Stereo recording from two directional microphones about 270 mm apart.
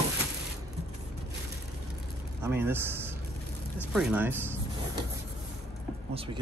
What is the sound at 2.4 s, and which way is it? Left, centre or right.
A man's voice, centre.